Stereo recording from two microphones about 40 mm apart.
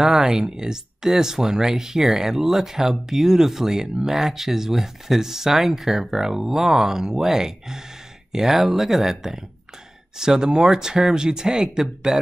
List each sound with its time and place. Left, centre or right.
0.0 s speech: centre